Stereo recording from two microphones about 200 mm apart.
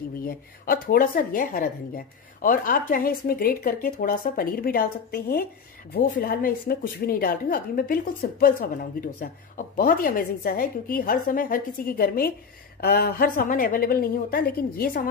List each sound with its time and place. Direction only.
0.3 s a woman's voice: 45° left (ahead or behind)